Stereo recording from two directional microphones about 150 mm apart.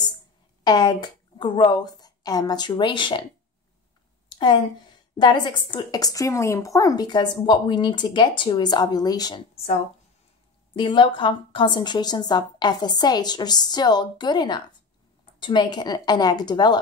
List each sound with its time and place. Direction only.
0.7 s speech: 30° left (ahead or behind)
4.3 s a sound: 30° left (ahead or behind)
5.2 s speech: 30° left (ahead or behind)
10.8 s speech: 35° left (ahead or behind)